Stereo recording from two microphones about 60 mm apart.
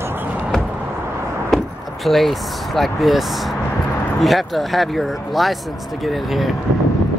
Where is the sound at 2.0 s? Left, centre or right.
Centre.